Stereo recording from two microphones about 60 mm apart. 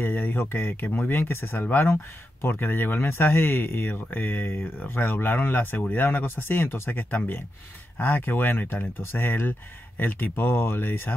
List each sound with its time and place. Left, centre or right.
0.0 s speech: left